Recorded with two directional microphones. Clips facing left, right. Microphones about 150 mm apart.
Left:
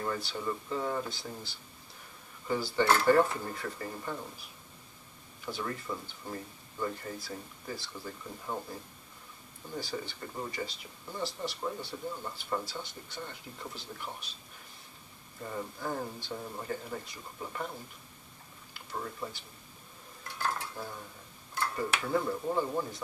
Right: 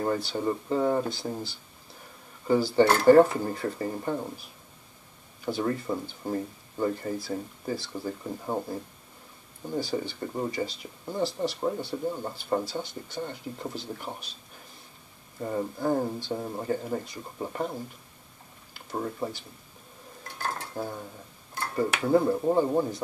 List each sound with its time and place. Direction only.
0.0 s speech: 35° right (ahead or behind)
2.4 s speech: 35° right (ahead or behind)
5.4 s speech: 35° right (ahead or behind)
9.9 s speech: 35° right (ahead or behind)
15.4 s speech: 35° right (ahead or behind)
18.9 s speech: 35° right (ahead or behind)
20.2 s dishes: 45° right (ahead or behind)
22.0 s speech: 35° right (ahead or behind)